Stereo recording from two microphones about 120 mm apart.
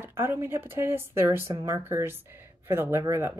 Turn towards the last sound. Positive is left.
turn(degrees=-20)  # may be behind; listen again after turning